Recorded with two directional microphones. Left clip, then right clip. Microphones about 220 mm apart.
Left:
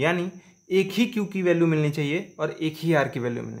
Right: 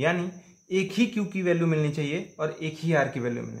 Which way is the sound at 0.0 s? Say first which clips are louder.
Left 2 dB; 35° left (ahead or behind).